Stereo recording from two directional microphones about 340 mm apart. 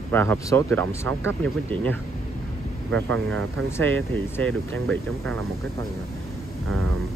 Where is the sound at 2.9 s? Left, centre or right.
Right.